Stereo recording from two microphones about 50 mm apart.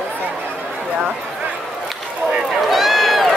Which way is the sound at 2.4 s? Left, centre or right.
Centre.